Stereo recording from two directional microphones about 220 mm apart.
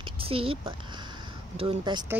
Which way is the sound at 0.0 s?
25° right (ahead or behind).